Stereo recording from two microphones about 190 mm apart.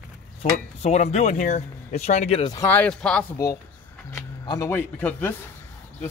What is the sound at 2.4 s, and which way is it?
Speech, 20° left (ahead or behind).